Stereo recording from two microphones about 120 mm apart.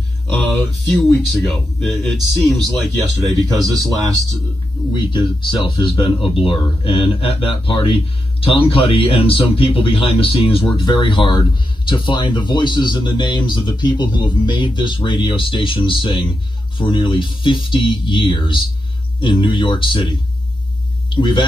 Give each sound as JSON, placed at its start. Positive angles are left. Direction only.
{"t": 0.3, "sound": "speech", "side_deg": 10}
{"t": 3.6, "sound": "speech", "side_deg": -30}
{"t": 4.9, "sound": "speech", "side_deg": 40}